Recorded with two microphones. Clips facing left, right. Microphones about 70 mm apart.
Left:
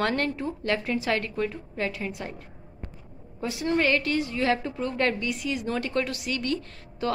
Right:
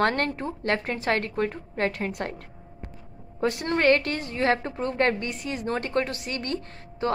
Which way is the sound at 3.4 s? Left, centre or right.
Right.